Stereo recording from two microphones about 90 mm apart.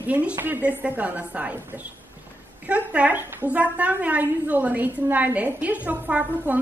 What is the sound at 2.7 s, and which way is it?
A woman's voice, 15° right (ahead or behind).